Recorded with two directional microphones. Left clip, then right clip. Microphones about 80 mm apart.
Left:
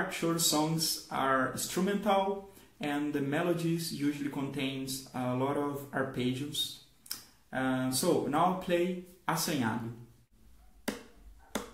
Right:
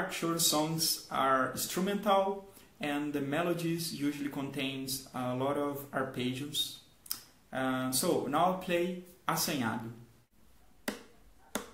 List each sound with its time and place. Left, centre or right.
0.1 s speech: right
7.1 s a sound: right
8.3 s speech: right
11.5 s finger snapping: right